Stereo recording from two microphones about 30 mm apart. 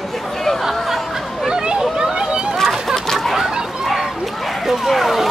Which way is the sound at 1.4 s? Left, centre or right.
Right.